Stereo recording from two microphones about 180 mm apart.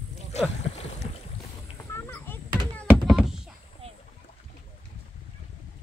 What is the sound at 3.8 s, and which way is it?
Boat, 35° right (ahead or behind).